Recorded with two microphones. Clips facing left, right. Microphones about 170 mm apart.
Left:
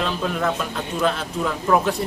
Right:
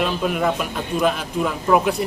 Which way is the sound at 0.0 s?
10° right (ahead or behind).